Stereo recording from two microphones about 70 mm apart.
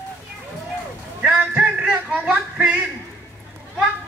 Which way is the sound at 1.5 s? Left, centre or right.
Centre.